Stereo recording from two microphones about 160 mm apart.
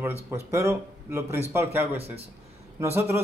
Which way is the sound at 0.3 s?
20° right (ahead or behind).